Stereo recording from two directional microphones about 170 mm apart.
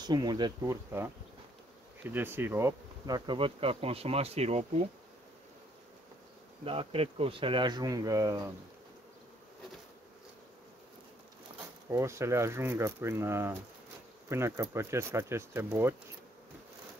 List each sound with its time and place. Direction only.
0.0 s speech: 25° right (ahead or behind)
2.0 s bee: 15° right (ahead or behind); by 4.8 s 40° right (ahead or behind)
6.6 s speech: 35° right (ahead or behind)
11.9 s speech: 15° right (ahead or behind)